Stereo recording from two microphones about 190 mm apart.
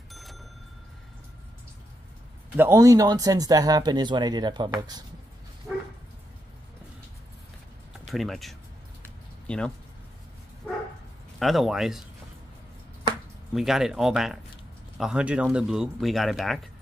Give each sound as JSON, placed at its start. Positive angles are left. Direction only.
{"t": 0.1, "sound": "bicycle bell", "side_deg": 0}
{"t": 2.5, "sound": "speech", "side_deg": -10}
{"t": 8.1, "sound": "speech", "side_deg": 0}
{"t": 11.3, "sound": "speech", "side_deg": 0}
{"t": 13.5, "sound": "speech", "side_deg": 0}